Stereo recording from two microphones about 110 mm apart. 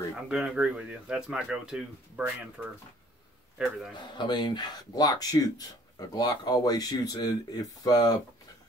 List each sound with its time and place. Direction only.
0.1 s speech: 5° right (ahead or behind)
4.1 s speech: 45° left (ahead or behind)